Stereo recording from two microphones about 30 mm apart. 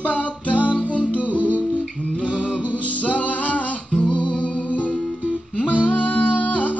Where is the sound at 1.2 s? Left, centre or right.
Right.